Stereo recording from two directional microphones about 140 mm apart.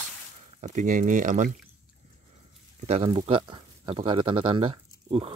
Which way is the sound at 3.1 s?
35° right (ahead or behind).